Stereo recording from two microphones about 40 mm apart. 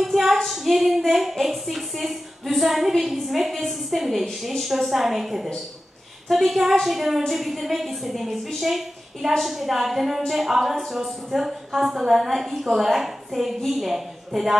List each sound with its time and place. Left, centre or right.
0.0 s female singing: centre
0.5 s a woman's voice: centre